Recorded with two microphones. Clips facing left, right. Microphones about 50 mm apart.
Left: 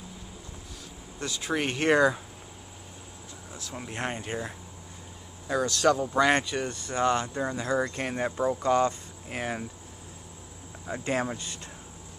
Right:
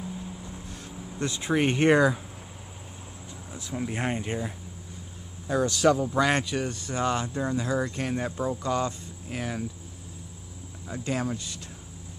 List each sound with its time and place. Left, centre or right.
1.2 s speech: right; by 2.1 s centre
3.7 s speech: centre
5.7 s speech: centre
10.9 s speech: left